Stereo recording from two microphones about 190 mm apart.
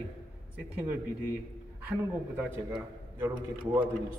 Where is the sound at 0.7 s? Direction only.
10° right (ahead or behind).